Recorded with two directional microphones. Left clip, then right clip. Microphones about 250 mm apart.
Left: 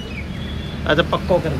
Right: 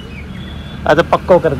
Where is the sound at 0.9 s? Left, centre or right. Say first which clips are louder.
Right 7 dB; centre.